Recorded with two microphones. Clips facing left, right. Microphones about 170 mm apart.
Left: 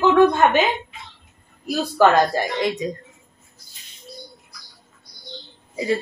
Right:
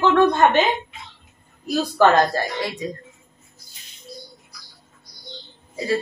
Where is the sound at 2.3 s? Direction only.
20° left (ahead or behind).